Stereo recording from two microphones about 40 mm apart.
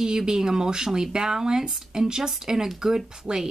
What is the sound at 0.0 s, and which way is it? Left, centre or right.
Speech, centre.